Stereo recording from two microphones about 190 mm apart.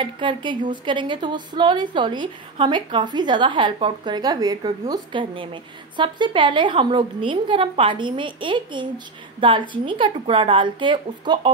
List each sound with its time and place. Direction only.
0.0 s a woman's voice: 25° right (ahead or behind)